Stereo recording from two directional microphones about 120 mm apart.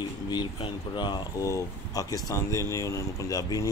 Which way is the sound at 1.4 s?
30° left (ahead or behind).